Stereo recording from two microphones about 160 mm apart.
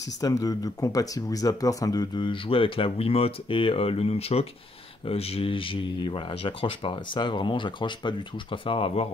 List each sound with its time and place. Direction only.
0.2 s speech: 20° left (ahead or behind)